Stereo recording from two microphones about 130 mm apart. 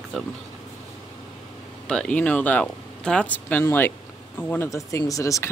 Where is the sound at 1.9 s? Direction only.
5° left (ahead or behind).